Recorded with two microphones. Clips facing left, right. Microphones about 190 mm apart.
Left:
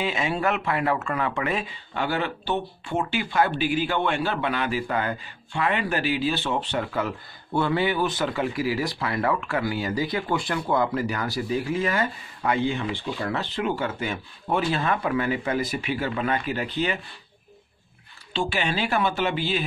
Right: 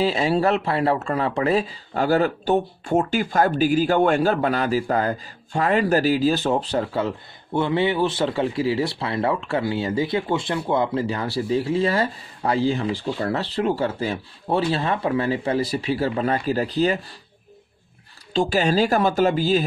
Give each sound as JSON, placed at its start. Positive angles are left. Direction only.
{"t": 0.0, "sound": "speech", "side_deg": -35}
{"t": 18.3, "sound": "speech", "side_deg": -40}